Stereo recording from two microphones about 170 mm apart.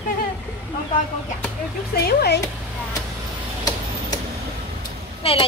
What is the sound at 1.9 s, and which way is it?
Speech, 75° left (ahead or behind).